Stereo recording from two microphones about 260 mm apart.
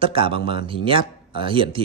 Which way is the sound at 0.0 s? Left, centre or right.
Right.